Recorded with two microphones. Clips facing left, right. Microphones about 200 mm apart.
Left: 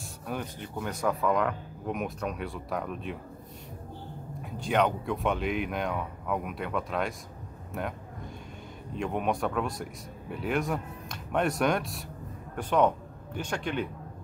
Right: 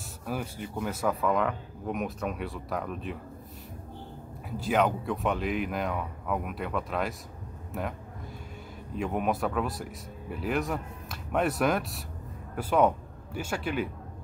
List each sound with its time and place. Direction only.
0.3 s speech: 5° right (ahead or behind)
4.4 s speech: 5° right (ahead or behind)
8.9 s speech: 5° right (ahead or behind)